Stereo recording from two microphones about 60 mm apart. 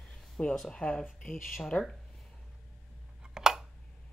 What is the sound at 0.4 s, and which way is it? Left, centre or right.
Speech, centre.